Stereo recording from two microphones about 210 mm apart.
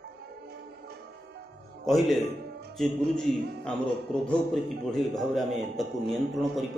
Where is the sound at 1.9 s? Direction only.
Centre (ahead or behind).